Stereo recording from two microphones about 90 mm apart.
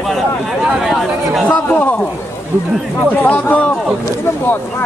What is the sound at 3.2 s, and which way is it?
Speech, 15° left (ahead or behind).